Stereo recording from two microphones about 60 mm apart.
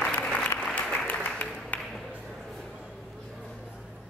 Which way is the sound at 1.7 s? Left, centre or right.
Left.